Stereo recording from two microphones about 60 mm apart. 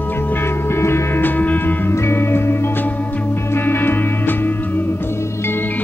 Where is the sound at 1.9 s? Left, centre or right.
Left.